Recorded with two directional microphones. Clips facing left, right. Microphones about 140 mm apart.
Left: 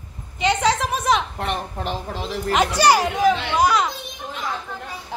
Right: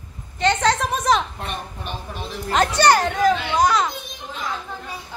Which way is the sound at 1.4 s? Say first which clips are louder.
Left 5 dB; 85° left.